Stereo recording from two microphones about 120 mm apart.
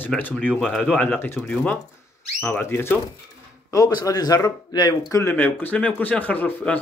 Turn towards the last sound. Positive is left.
turn(degrees=15)  # may be behind; listen again after turning